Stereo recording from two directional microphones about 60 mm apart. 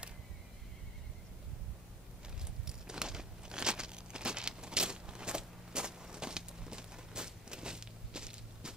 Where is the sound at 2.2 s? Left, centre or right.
Centre.